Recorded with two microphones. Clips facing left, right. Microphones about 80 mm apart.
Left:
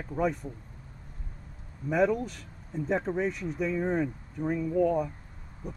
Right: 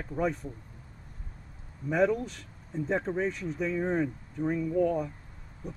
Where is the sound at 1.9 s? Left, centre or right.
Centre.